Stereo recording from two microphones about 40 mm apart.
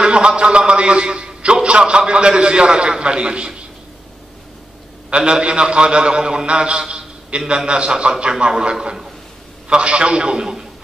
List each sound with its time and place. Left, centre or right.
0.0 s a man's voice: right
5.1 s a man's voice: right